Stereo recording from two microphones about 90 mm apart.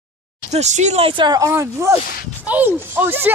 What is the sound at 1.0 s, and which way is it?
Speech, 65° right (ahead or behind).